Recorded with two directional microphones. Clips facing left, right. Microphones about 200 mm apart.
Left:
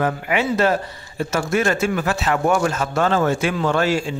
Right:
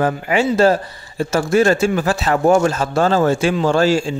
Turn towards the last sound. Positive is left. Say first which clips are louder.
# right 4 dB
turn(degrees=-30)  # may be behind; listen again after turning